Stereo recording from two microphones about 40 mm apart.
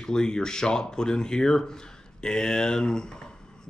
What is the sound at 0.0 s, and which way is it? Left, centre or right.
Speech, centre.